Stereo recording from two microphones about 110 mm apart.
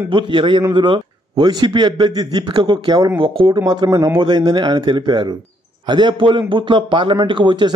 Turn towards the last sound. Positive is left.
turn(degrees=-45)  # may be behind; listen again after turning